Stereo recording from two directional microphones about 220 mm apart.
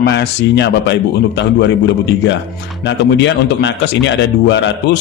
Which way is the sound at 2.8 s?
55° left (ahead or behind).